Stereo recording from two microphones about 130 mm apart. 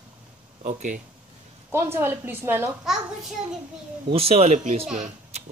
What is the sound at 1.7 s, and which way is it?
Speech, 15° right (ahead or behind).